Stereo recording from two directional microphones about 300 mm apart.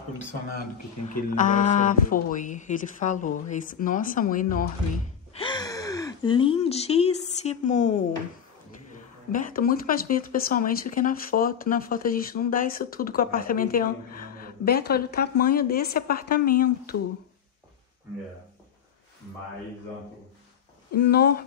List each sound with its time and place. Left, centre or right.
1.0 s speech: left
5.4 s speech: centre
9.3 s speech: left
20.9 s speech: left